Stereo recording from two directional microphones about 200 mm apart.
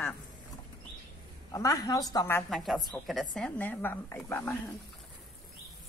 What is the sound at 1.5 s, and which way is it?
Speech, 15° left (ahead or behind).